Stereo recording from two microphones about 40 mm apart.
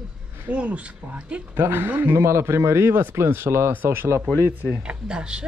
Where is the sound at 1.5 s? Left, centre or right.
Right.